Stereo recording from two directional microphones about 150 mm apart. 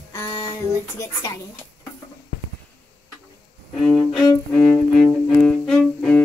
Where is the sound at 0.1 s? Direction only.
20° left (ahead or behind).